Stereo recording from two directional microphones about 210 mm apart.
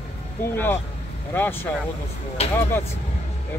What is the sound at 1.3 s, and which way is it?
Speech, 10° left (ahead or behind).